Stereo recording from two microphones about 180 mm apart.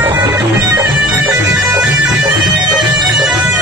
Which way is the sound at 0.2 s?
20° right (ahead or behind).